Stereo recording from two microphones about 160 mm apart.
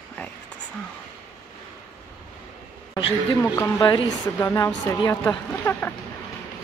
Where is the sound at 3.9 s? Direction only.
30° left (ahead or behind).